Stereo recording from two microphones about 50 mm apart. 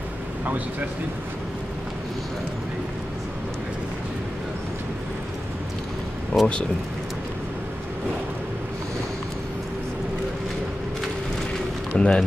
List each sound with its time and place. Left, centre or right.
6.3 s speech: left
11.9 s speech: left